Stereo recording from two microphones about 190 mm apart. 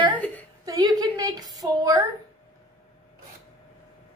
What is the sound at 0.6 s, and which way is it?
A woman's voice, 20° right (ahead or behind).